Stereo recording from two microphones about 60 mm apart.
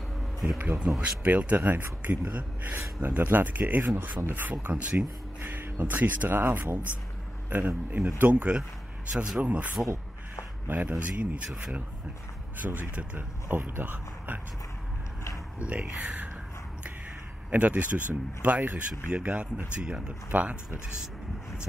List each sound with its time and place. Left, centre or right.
0.6 s speech: right
4.9 s speech: right
10.7 s speech: right
12.6 s speech: right
15.6 s speech: right
17.5 s speech: right